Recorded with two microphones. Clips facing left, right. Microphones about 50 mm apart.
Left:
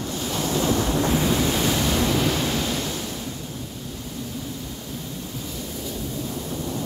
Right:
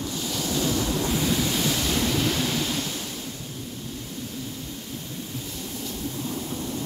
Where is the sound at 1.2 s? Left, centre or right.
Left.